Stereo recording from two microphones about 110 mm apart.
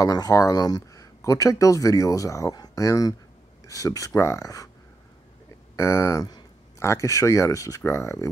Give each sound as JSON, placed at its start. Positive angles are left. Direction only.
{"t": 0.0, "sound": "speech", "side_deg": 30}
{"t": 5.8, "sound": "speech", "side_deg": 25}